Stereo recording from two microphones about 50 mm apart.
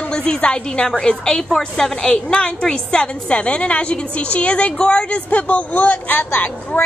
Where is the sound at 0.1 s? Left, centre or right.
Centre; by 6.8 s left.